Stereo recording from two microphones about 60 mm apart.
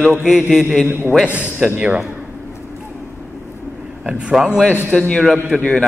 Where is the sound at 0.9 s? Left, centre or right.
Right.